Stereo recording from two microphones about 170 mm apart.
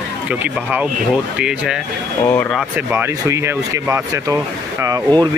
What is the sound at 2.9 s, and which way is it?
Speech, 15° right (ahead or behind).